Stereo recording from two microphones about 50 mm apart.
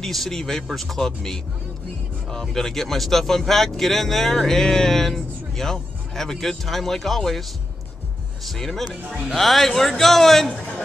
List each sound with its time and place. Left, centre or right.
0.0 s speech: centre
8.5 s speech: centre
10.5 s a sound: left